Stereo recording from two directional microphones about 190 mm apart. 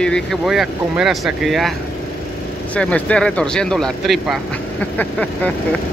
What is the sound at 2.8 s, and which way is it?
Speech, 5° left (ahead or behind).